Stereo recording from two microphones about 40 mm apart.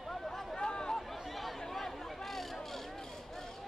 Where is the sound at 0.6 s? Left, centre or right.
Centre.